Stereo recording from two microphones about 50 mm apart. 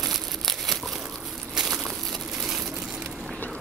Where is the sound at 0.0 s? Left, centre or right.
Centre.